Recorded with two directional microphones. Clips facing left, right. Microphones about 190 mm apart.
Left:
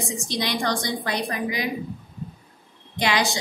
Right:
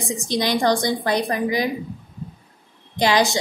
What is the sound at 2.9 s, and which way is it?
Speech, 35° right (ahead or behind).